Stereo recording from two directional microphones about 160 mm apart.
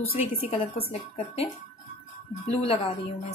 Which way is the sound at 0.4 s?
35° left (ahead or behind).